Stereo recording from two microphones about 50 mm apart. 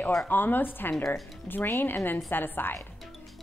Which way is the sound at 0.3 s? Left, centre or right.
Left.